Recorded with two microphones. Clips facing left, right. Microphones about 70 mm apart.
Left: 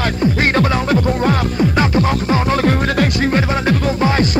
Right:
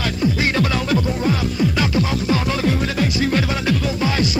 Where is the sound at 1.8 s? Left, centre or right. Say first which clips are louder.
Left 4 dB; left.